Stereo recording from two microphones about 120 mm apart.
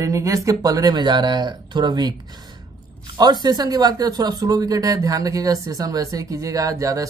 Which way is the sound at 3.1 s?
35° right (ahead or behind).